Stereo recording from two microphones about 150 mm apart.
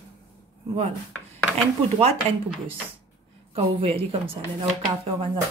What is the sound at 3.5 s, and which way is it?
Speech, 40° right (ahead or behind).